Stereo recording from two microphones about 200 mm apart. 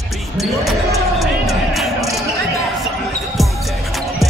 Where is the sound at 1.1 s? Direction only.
Centre (ahead or behind).